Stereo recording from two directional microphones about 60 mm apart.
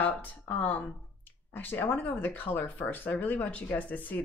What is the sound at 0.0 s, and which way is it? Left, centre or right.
Speech, left.